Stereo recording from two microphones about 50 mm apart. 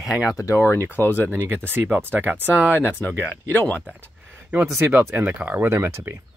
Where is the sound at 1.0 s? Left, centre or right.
Left.